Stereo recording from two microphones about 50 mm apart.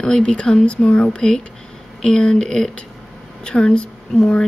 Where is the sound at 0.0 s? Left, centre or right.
Centre.